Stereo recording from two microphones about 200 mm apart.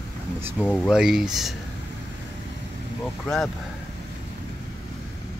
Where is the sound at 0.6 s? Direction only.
Centre (ahead or behind).